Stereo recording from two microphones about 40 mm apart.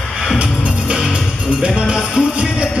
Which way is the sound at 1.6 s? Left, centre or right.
Centre.